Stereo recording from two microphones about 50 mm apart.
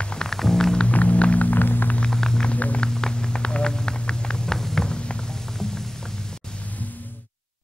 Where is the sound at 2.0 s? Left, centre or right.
Centre.